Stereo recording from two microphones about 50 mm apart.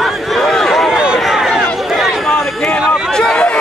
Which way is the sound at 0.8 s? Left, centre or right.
Centre.